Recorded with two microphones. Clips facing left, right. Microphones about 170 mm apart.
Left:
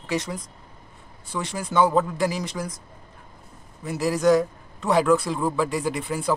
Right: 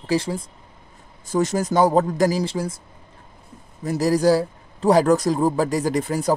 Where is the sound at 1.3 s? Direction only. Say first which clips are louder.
Right 9 dB; 45° right (ahead or behind).